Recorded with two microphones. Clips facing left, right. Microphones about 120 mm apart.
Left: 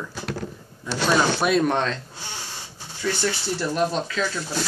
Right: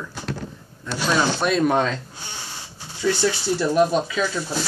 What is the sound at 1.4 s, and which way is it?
Speech, 5° left (ahead or behind).